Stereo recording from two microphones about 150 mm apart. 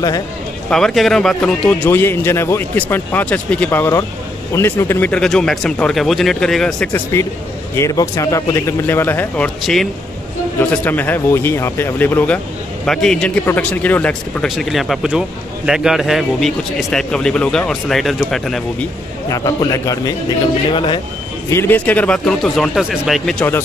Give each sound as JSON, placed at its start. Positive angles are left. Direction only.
{"t": 0.7, "sound": "speech", "side_deg": 5}
{"t": 6.9, "sound": "speech", "side_deg": 15}
{"t": 19.2, "sound": "speech", "side_deg": 20}
{"t": 21.5, "sound": "speech", "side_deg": 15}